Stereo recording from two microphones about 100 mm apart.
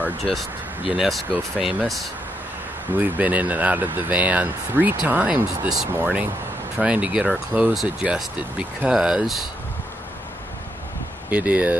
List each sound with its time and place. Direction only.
0.9 s speech: centre (ahead or behind)
3.0 s speech: 15° right (ahead or behind)
11.2 s speech: 15° right (ahead or behind)